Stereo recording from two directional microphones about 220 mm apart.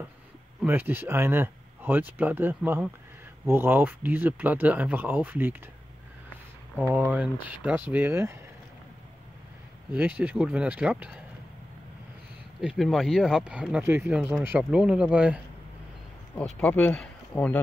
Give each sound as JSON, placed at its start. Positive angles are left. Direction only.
{"t": 0.6, "sound": "speech", "side_deg": -10}
{"t": 6.9, "sound": "speech", "side_deg": -10}
{"t": 9.9, "sound": "speech", "side_deg": -5}
{"t": 12.5, "sound": "speech", "side_deg": 0}
{"t": 16.3, "sound": "speech", "side_deg": 5}